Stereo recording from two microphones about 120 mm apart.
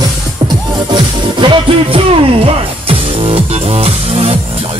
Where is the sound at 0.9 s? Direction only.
45° right (ahead or behind).